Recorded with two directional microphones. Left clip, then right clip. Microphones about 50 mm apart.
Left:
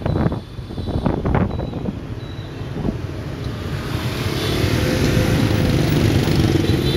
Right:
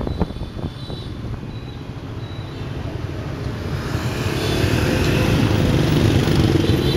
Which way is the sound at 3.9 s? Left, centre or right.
Left.